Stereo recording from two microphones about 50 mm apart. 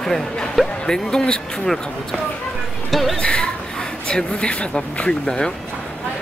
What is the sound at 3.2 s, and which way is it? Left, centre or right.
Speech, centre.